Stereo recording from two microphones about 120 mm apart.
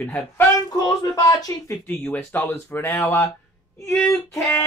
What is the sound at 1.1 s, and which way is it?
Speech, 30° left (ahead or behind).